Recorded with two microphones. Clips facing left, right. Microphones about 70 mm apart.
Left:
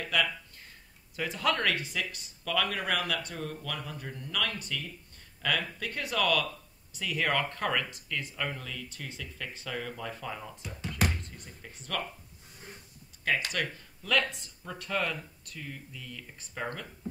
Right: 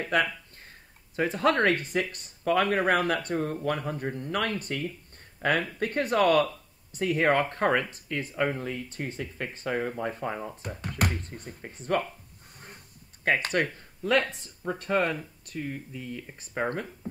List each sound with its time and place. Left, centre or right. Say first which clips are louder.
0.0 s speech: right 4 dB; right
12.5 s speech: even; right